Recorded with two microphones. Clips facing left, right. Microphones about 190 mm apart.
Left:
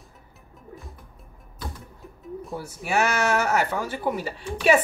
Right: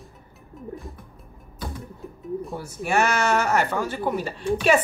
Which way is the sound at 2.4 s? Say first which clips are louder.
Right 3 dB; centre (ahead or behind).